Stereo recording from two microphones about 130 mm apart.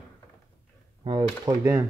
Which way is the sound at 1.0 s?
35° right (ahead or behind).